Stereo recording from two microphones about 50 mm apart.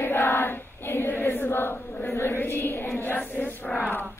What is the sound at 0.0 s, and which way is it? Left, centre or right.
Choir, left.